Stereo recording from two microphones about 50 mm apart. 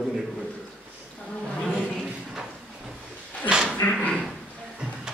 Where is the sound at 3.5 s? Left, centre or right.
Centre.